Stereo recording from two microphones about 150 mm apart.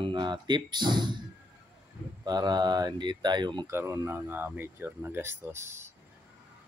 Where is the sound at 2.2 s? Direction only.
25° right (ahead or behind).